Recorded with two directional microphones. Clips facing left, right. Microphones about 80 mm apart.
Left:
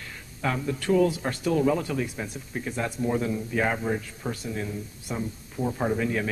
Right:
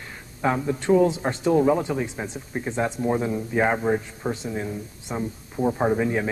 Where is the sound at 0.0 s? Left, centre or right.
Right.